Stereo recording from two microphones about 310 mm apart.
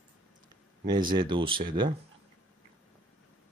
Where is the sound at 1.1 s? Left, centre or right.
Centre.